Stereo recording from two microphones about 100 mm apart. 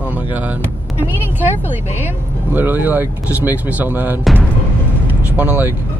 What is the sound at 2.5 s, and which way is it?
Speech, 20° right (ahead or behind).